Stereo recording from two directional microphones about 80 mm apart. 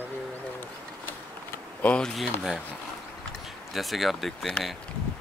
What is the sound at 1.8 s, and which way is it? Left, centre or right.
Speech, centre.